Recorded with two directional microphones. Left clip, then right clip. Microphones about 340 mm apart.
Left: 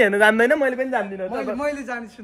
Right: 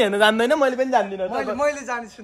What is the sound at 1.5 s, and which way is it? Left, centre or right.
Speech, right.